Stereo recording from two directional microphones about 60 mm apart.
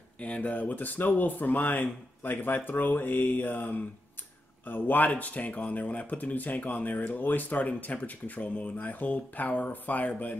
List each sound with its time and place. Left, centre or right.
0.2 s speech: left